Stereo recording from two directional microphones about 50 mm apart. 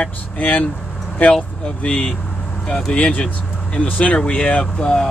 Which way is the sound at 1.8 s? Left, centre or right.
Left.